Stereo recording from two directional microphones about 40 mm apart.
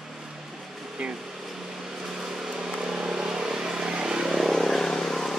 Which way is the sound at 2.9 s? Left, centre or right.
Centre.